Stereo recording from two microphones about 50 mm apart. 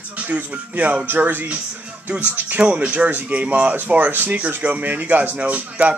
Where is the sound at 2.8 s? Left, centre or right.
Right.